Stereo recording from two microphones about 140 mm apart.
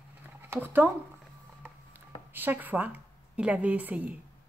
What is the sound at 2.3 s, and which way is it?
A woman's voice, 15° right (ahead or behind).